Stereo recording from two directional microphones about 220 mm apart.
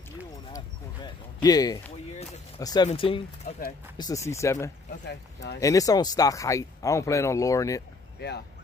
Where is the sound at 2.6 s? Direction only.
15° left (ahead or behind).